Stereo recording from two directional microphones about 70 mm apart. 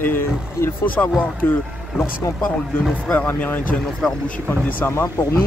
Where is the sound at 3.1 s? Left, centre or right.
Left.